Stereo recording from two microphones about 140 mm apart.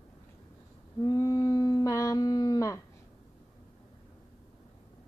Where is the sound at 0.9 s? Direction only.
25° left (ahead or behind).